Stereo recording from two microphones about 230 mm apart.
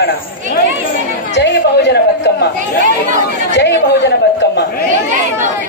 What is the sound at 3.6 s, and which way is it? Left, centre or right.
A woman's voice, left.